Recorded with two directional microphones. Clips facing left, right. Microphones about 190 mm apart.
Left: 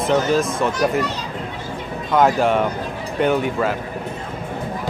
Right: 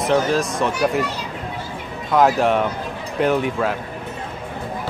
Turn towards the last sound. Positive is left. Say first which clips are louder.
# even
turn(degrees=0)  # may be behind; listen again after turning